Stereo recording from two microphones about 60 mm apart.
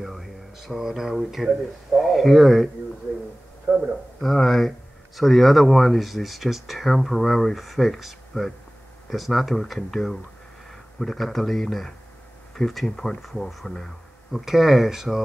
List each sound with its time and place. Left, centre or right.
0.0 s speech: centre
3.7 s a man's voice: centre